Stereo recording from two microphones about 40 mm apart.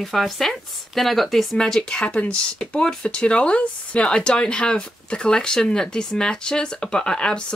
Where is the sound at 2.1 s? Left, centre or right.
Left.